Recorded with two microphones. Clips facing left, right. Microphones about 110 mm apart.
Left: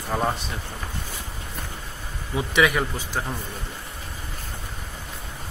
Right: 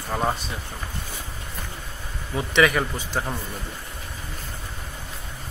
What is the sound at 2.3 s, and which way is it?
Speech, 5° left (ahead or behind).